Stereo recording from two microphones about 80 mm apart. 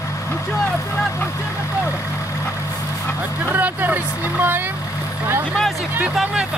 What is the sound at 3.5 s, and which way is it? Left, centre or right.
Speech, right.